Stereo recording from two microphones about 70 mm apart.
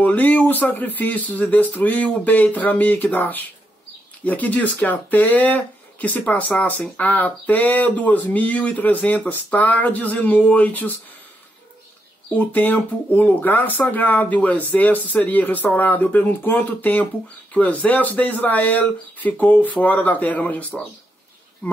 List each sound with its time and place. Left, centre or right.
0.0 s speech: left
12.4 s speech: left